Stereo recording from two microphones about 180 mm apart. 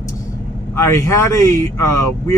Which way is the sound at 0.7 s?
15° left (ahead or behind).